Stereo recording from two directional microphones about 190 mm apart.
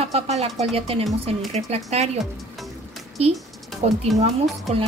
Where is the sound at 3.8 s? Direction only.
35° right (ahead or behind).